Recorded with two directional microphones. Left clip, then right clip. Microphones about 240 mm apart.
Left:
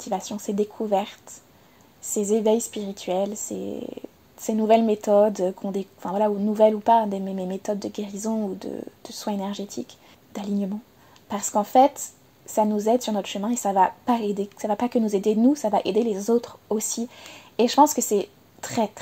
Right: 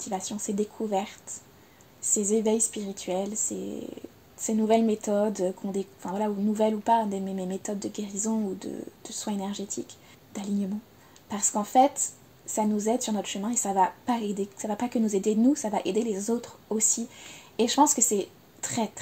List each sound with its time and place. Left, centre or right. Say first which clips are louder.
0.0 s speech: left 4 dB; left